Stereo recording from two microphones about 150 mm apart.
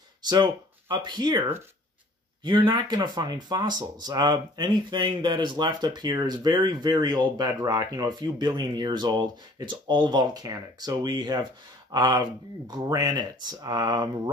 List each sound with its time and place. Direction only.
0.3 s speech: 30° right (ahead or behind)
2.4 s speech: 30° right (ahead or behind)